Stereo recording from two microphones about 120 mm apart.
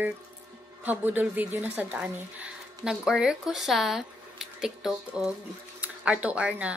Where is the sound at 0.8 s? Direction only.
15° right (ahead or behind).